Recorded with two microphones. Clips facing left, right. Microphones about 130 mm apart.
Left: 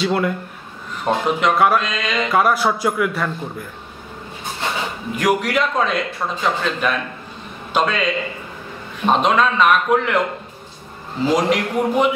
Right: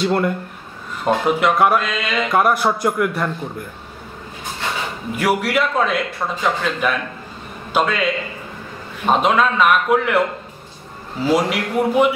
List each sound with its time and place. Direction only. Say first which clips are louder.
0.0 s speech: right 1 dB; centre (ahead or behind)
5.1 s a man's voice: even; 10° right (ahead or behind)
11.2 s a man's voice: even; 10° right (ahead or behind)